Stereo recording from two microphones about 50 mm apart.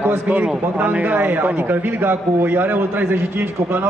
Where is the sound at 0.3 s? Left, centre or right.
Right.